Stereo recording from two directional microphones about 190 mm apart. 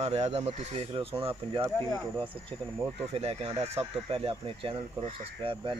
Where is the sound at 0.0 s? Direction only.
35° right (ahead or behind).